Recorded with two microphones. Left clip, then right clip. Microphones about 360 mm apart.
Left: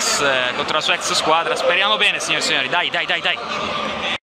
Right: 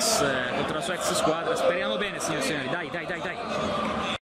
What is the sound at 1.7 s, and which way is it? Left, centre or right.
Speech, left.